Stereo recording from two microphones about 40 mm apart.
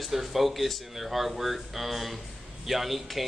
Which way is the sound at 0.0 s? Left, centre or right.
Centre.